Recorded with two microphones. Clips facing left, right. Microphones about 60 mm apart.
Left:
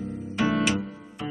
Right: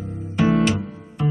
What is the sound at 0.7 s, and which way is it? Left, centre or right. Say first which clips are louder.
Music: right 2 dB; centre.